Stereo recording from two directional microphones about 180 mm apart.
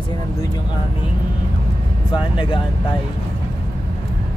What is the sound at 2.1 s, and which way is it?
Speech, 25° left (ahead or behind).